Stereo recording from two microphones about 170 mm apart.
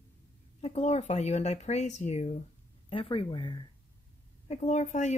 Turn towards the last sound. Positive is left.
turn(degrees=45)  # may be behind; listen again after turning